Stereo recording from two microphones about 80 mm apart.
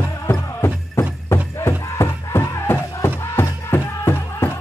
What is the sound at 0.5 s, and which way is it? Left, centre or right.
Music, left.